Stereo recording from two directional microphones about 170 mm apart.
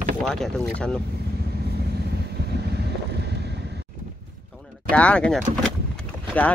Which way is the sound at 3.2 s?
80° right.